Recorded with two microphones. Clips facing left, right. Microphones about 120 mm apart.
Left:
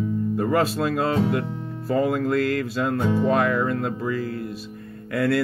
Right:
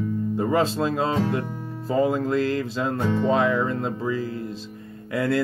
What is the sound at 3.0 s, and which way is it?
Speech, 10° left (ahead or behind).